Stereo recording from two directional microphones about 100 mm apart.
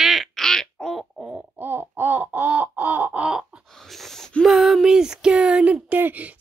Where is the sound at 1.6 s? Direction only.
20° right (ahead or behind).